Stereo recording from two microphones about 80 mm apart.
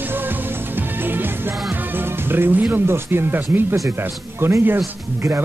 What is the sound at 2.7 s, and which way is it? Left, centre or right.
Speech, right.